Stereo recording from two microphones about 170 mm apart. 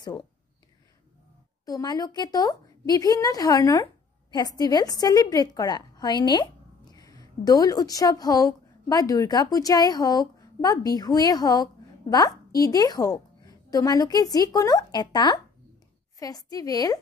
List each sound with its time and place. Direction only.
0.0 s speech: 25° left (ahead or behind)
1.7 s a woman's voice: 20° left (ahead or behind)